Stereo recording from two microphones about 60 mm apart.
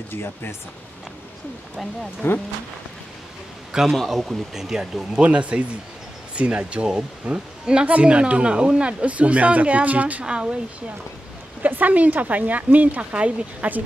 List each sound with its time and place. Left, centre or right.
0.1 s speech: left
2.2 s speech: left
3.9 s speech: centre
11.6 s speech: right